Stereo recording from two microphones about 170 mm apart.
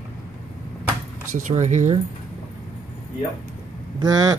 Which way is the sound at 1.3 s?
45° right (ahead or behind).